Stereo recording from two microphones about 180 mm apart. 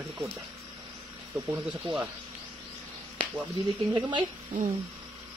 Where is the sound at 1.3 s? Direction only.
15° right (ahead or behind).